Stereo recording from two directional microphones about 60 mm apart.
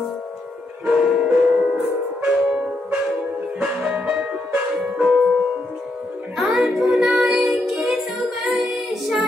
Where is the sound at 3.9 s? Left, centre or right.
Centre.